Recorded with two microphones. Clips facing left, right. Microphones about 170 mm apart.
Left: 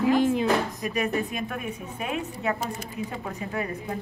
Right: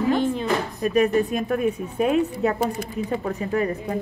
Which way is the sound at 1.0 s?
40° right (ahead or behind).